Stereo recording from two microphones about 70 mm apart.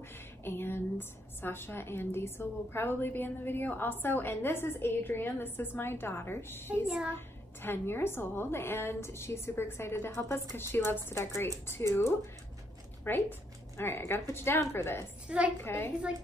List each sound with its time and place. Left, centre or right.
0.4 s a woman's voice: left
13.0 s a woman's voice: left
15.2 s a woman's voice: centre
15.6 s a woman's voice: left